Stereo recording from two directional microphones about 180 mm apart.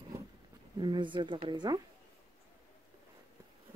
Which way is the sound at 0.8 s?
25° right (ahead or behind).